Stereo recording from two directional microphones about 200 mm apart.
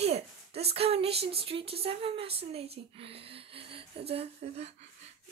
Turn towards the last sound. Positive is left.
turn(degrees=-30)  # may be behind; listen again after turning